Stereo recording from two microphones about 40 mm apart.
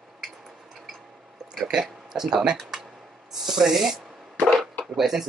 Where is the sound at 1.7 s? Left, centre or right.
Centre.